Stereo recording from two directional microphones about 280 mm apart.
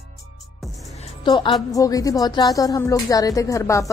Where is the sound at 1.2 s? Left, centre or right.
Centre.